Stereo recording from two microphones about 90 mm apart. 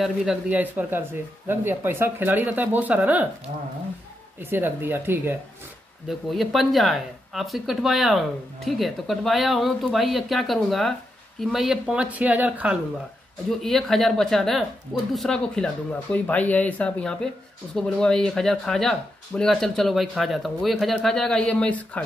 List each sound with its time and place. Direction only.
0.0 s speech: 5° right (ahead or behind)
0.5 s speech: 20° right (ahead or behind)
4.4 s speech: 25° right (ahead or behind)
6.0 s speech: centre (ahead or behind); by 12.7 s 15° right (ahead or behind)
13.6 s speech: 5° left (ahead or behind)